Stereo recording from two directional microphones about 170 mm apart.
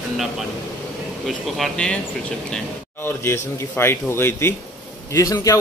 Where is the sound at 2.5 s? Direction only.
15° left (ahead or behind).